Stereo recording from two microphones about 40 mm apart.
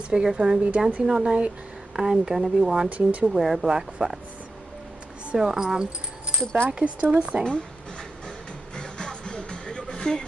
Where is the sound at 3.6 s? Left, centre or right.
Centre.